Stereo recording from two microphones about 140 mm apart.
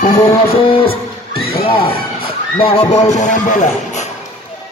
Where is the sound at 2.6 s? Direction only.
45° left (ahead or behind); by 3.7 s 65° left (ahead or behind).